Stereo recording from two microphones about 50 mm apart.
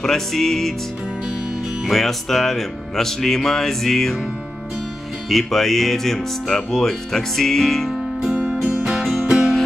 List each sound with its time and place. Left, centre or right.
0.0 s speech: centre
1.9 s speech: centre
5.3 s speech: centre
8.5 s music: centre